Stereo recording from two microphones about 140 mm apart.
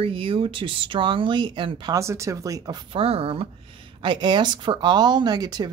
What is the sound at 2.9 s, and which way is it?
Speech, 45° right (ahead or behind).